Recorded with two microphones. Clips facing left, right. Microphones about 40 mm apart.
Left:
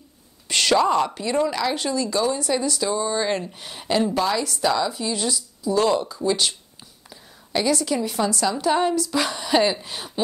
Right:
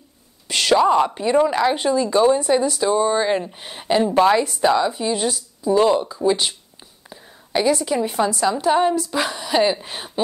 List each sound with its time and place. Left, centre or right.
0.5 s a woman's voice: centre
4.1 s a woman's voice: right
5.3 s speech: right
5.8 s a woman's voice: centre
7.1 s a sound: centre
8.0 s a woman's voice: centre
9.8 s speech: right